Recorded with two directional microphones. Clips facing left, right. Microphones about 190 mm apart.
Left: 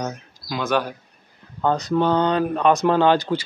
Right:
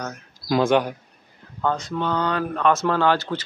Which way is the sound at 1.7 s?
35° left (ahead or behind).